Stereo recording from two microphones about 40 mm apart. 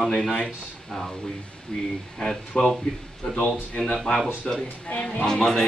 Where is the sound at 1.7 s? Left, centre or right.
Left.